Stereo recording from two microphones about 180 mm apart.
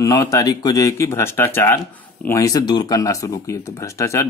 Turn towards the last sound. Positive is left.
turn(degrees=15)  # may be behind; listen again after turning